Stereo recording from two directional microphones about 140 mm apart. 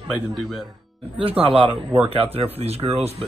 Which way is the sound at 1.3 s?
40° right (ahead or behind).